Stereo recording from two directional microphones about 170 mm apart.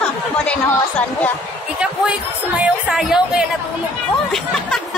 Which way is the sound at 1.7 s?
5° right (ahead or behind).